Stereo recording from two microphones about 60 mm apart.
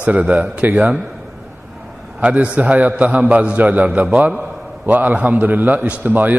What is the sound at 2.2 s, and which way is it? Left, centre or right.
A man's voice, right.